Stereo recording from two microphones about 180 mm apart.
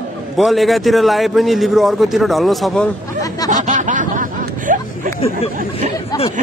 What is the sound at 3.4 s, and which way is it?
Snicker, 45° right (ahead or behind).